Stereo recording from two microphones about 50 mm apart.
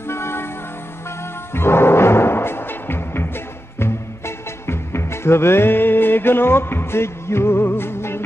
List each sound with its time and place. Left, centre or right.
0.0 s music: left
1.5 s music: left